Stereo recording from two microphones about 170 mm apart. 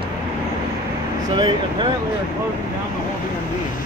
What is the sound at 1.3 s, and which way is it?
Speech, 25° right (ahead or behind).